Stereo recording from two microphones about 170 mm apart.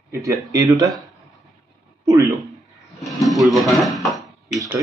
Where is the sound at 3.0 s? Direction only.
Centre (ahead or behind).